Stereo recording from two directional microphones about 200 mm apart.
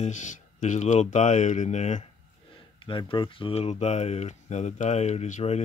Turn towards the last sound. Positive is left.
turn(degrees=35)  # may be behind; listen again after turning